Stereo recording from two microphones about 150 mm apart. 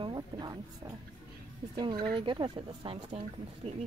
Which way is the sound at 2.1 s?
35° right (ahead or behind).